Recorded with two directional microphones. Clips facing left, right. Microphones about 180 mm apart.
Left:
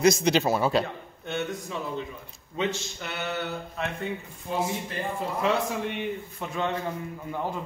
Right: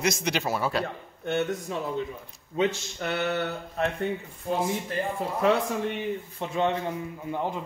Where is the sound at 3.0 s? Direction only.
45° right (ahead or behind).